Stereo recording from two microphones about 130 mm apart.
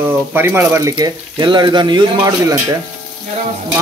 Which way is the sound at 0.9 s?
35° right (ahead or behind).